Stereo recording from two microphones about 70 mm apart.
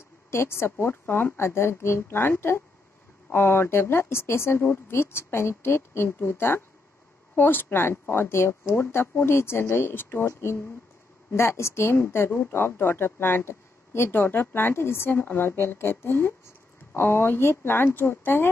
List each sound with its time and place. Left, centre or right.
0.3 s speech: left